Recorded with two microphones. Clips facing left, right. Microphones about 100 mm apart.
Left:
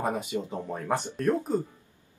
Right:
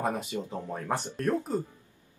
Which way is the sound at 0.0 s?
15° left (ahead or behind).